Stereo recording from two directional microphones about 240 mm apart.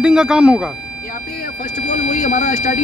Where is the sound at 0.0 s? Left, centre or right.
Centre.